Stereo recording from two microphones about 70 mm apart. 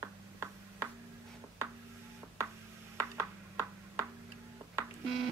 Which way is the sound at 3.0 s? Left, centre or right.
Right.